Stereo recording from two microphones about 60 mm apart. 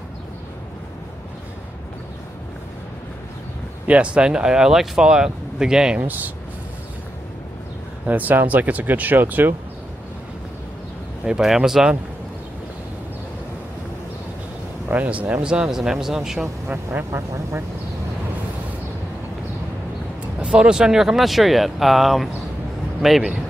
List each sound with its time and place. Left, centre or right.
3.8 s speech: centre
5.9 s speech: right
8.1 s speech: right
11.2 s speech: centre
14.9 s speech: right; by 16.4 s centre
16.6 s speech: right
17.1 s speech: right
20.3 s speech: centre